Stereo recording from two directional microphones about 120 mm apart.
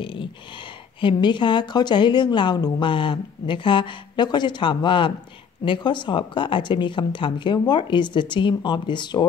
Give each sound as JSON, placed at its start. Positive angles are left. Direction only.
{"t": 0.0, "sound": "speech", "side_deg": 45}